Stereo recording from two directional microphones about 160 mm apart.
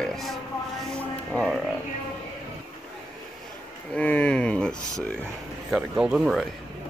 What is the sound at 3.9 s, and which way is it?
Speech, 10° left (ahead or behind).